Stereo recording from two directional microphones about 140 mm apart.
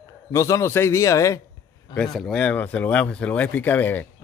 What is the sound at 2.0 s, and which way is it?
Speech, 5° left (ahead or behind).